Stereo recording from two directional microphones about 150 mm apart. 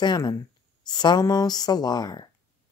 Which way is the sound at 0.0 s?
30° left (ahead or behind).